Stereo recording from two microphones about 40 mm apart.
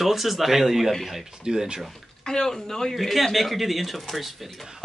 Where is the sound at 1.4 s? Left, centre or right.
Centre.